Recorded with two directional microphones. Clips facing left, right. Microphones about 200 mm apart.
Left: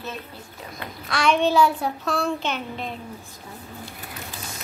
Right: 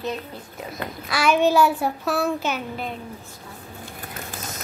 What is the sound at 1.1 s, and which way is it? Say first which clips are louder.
Child singing: right 1 dB; 5° right (ahead or behind).